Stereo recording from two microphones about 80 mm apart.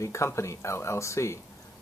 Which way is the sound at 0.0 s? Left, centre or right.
Left.